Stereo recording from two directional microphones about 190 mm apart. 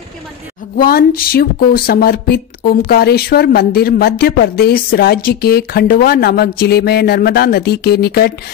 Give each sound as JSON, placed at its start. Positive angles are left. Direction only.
{"t": 0.7, "sound": "speech", "side_deg": 50}